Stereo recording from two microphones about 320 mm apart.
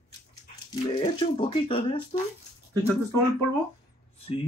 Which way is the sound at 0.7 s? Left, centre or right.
Centre.